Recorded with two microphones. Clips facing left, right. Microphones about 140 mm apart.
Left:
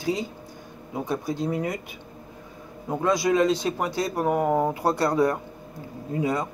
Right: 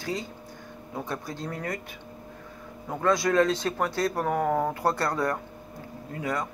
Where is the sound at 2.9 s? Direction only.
10° left (ahead or behind).